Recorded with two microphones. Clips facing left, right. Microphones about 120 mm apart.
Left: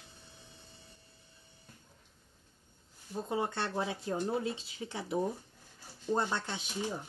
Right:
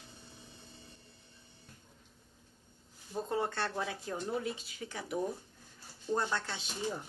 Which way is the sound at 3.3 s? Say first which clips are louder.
Left 1 dB; 15° left (ahead or behind).